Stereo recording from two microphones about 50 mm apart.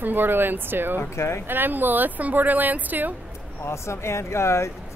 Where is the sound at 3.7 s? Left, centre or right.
Left.